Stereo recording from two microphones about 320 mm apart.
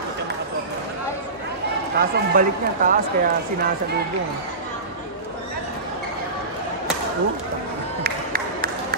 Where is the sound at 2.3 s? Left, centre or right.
Right.